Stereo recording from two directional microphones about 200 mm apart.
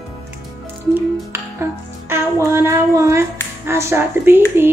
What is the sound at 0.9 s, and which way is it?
Music, 10° right (ahead or behind).